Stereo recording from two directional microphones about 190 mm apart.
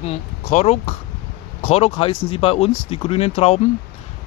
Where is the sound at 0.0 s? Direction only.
35° left (ahead or behind).